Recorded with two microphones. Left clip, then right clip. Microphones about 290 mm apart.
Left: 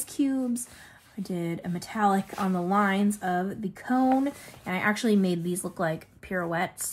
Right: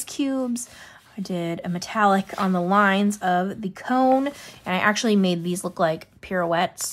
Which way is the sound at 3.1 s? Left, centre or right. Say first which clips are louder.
Right 6 dB; centre.